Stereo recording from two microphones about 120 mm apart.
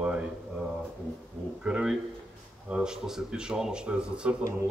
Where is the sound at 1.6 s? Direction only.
10° right (ahead or behind).